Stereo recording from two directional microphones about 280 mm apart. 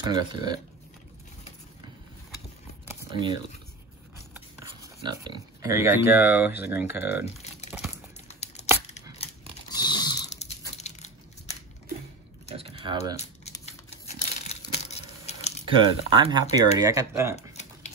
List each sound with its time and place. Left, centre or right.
0.0 s speech: centre
2.9 s a sound: centre
4.8 s pig: centre
5.6 s speech: centre
8.3 s tearing: left
9.2 s a sound: centre
12.4 s typing: right
13.1 s crumpling: left
15.7 s speech: centre
17.4 s a sound: left